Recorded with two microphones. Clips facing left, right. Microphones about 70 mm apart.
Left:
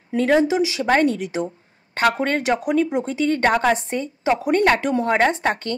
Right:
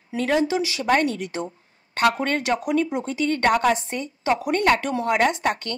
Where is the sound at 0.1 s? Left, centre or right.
Left.